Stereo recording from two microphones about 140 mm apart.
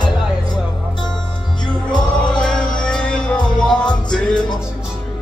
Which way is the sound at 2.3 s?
5° left (ahead or behind).